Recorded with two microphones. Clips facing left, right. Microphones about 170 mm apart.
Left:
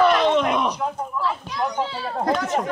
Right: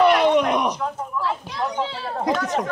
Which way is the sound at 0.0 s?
15° right (ahead or behind).